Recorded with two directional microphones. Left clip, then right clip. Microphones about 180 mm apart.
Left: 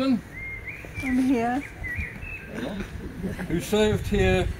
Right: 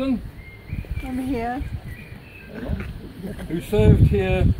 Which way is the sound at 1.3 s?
40° left (ahead or behind).